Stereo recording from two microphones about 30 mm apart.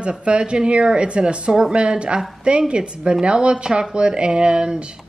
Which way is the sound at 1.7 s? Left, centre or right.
Right.